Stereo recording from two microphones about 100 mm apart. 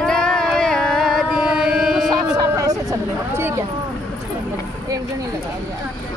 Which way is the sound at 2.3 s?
35° right (ahead or behind).